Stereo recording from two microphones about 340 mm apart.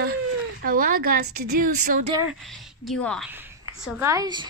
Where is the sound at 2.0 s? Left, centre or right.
Centre.